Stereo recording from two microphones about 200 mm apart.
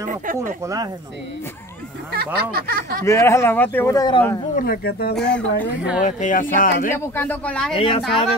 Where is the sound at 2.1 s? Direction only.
50° right (ahead or behind).